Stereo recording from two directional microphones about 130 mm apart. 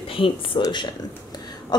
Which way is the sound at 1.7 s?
30° left (ahead or behind).